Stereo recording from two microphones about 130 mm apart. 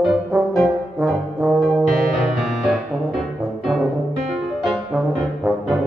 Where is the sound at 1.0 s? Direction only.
5° right (ahead or behind).